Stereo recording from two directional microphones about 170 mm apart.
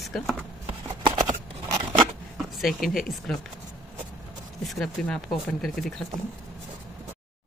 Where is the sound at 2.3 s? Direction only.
Centre (ahead or behind).